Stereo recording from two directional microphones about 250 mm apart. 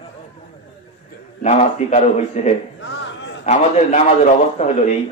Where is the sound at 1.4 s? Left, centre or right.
Left.